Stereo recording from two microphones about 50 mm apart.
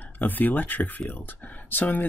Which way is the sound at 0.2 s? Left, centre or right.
Left.